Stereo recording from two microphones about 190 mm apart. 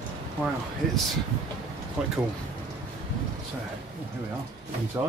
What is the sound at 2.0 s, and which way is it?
Speech, 5° right (ahead or behind).